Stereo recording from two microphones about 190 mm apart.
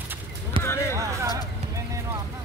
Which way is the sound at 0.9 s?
15° right (ahead or behind).